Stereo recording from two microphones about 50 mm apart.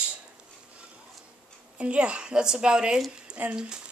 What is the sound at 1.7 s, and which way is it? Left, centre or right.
A woman's voice, right.